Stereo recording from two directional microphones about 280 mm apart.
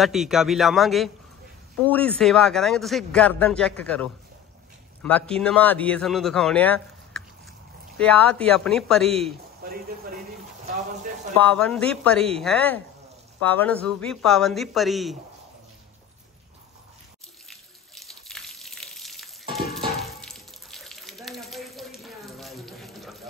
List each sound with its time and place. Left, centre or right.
0.0 s speech: centre
8.0 s speech: centre
9.6 s speech: right
11.4 s speech: centre
17.5 s water: centre